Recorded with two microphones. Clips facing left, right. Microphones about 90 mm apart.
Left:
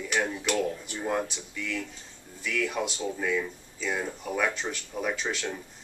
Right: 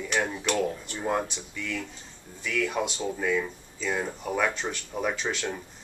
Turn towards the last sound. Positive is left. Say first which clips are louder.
# right 2 dB
turn(degrees=0)  # may be behind; listen again after turning